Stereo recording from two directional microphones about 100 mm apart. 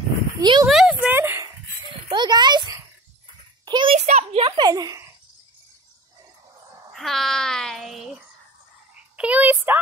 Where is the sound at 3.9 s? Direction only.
75° right (ahead or behind).